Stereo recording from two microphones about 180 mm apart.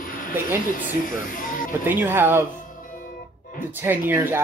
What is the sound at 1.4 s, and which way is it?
Speech, 50° left (ahead or behind).